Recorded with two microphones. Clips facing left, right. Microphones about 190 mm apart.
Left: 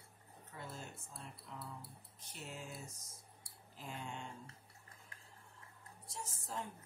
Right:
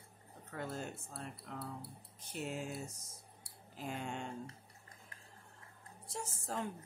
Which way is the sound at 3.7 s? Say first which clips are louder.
Right 6 dB; 75° right (ahead or behind).